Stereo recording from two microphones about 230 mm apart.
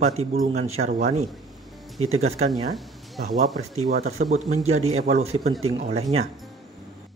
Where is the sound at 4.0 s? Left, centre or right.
Right.